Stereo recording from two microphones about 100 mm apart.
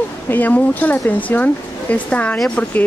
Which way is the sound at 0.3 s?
20° left (ahead or behind).